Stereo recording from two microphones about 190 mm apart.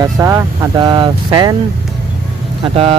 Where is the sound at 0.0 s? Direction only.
15° right (ahead or behind).